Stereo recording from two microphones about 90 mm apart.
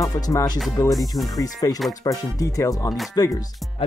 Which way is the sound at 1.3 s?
40° left (ahead or behind).